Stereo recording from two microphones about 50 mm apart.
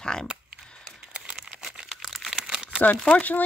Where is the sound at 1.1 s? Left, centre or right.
Right.